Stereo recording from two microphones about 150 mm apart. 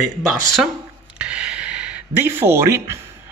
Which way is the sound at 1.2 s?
5° right (ahead or behind).